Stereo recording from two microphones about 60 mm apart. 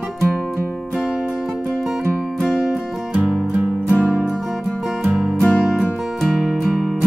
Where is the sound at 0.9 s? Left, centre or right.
Centre.